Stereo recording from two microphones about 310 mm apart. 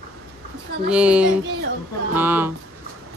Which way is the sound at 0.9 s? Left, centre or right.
Centre.